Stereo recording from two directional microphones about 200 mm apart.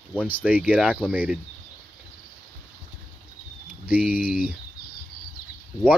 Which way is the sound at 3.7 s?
5° right (ahead or behind).